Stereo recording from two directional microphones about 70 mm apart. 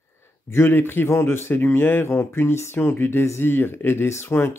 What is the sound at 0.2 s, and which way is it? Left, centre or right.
A man's voice, left.